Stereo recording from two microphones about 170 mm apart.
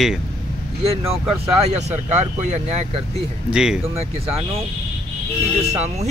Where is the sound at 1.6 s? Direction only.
40° right (ahead or behind).